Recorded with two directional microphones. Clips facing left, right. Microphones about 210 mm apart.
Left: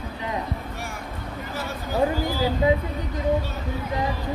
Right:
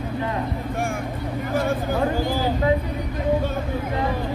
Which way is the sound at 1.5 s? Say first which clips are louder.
Right 7 dB; 50° right (ahead or behind).